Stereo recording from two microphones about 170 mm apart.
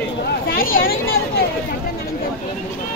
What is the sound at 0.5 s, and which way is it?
Speech, 55° left (ahead or behind).